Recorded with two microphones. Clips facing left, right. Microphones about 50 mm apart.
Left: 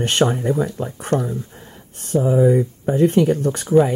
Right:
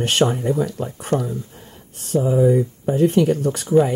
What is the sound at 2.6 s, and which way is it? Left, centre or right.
Speech, centre.